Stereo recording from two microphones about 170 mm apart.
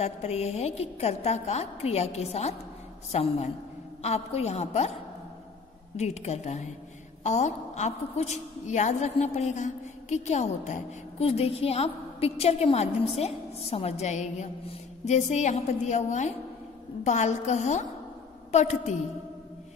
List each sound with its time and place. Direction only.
0.0 s a woman's voice: 40° left (ahead or behind)
5.9 s a woman's voice: 40° left (ahead or behind)